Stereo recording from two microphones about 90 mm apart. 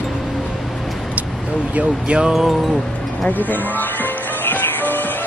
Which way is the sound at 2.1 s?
10° right (ahead or behind).